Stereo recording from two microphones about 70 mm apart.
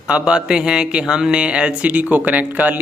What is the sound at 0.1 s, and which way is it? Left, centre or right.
Speech, centre.